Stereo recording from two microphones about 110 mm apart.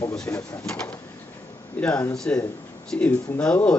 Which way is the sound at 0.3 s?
20° left (ahead or behind).